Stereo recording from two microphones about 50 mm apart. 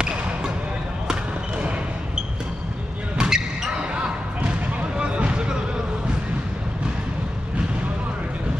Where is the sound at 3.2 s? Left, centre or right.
Centre.